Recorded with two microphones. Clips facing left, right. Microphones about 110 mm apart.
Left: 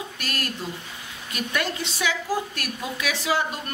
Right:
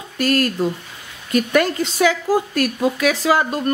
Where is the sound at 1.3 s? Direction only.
45° right (ahead or behind).